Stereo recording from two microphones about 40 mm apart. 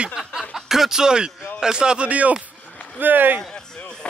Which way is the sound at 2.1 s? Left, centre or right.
Right.